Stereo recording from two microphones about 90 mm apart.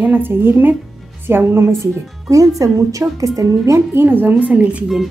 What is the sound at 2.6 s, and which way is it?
A woman's voice, 40° right (ahead or behind).